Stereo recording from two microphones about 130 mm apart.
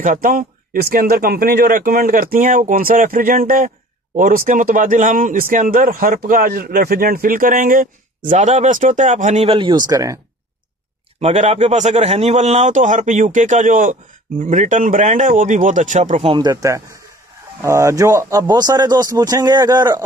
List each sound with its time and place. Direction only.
0.0 s speech: 85° right
8.3 s a man's voice: 65° right (ahead or behind); by 9.8 s 40° right (ahead or behind)
9.8 s speech: 25° right (ahead or behind)
11.1 s a man's voice: 55° right (ahead or behind); by 13.9 s 90° right
14.4 s speech: 75° right (ahead or behind)
16.2 s speech: 40° right (ahead or behind)